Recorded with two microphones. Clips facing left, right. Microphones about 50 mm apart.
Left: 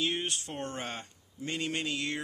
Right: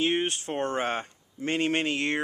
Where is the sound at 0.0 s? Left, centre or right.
Right.